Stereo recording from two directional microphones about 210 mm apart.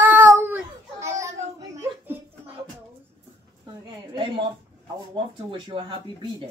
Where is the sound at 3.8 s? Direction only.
25° right (ahead or behind).